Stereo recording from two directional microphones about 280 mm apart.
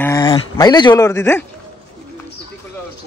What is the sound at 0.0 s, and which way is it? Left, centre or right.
Speech, centre.